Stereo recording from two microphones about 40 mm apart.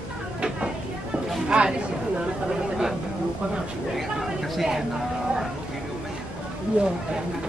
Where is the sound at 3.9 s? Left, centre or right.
Centre.